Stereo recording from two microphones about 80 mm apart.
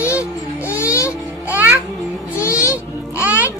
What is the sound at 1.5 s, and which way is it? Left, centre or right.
Music, right.